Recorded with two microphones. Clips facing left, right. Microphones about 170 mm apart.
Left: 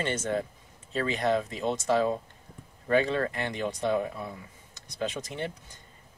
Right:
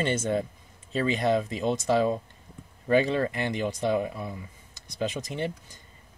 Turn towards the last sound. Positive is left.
turn(degrees=-15)  # may be behind; listen again after turning